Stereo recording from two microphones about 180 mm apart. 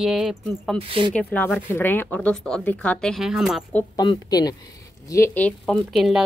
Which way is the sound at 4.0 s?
20° left (ahead or behind).